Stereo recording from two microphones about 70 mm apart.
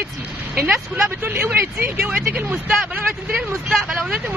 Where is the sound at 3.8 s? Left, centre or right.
Centre.